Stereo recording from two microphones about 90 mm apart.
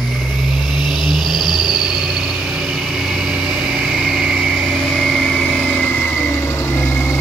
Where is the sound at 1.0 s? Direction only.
Centre (ahead or behind).